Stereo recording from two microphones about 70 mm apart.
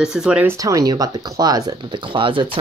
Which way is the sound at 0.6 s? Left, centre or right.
Right.